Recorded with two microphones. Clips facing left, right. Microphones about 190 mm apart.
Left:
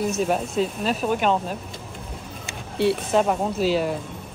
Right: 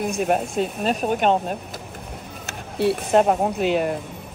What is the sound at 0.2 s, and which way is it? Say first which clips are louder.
Speech: right 3 dB; 55° right (ahead or behind).